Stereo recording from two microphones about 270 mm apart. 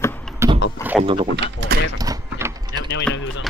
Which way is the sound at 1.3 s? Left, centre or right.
Right.